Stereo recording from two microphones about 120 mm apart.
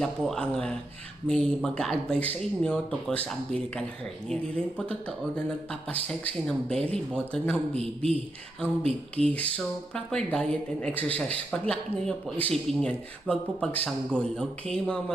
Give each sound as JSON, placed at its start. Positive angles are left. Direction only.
{"t": 0.0, "sound": "a man's voice", "side_deg": 5}
{"t": 7.7, "sound": "a man's voice", "side_deg": -60}
{"t": 9.2, "sound": "speech", "side_deg": 10}